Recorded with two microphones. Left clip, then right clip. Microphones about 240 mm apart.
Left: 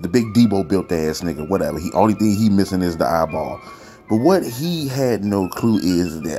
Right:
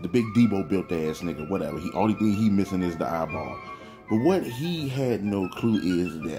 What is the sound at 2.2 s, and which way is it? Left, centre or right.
Speech, left.